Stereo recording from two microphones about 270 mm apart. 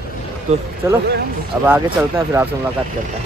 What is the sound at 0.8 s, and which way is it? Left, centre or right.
Speech, centre.